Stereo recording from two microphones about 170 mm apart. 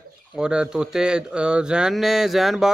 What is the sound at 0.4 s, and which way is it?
Speech, 5° right (ahead or behind).